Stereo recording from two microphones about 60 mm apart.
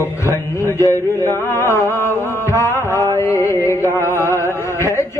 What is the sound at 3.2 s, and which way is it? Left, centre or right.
Music, left.